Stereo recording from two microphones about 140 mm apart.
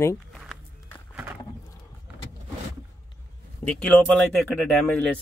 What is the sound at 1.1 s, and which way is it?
Wild animals, 10° right (ahead or behind).